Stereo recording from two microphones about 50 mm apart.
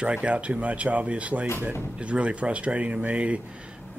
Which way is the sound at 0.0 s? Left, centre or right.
Right.